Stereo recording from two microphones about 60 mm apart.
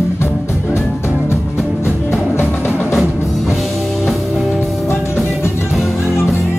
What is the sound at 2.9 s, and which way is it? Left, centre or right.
Music, centre.